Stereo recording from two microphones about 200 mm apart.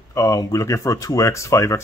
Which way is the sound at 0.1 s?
15° left (ahead or behind).